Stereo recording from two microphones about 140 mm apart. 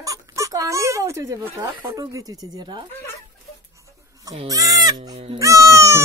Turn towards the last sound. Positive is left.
turn(degrees=-20)  # may be behind; listen again after turning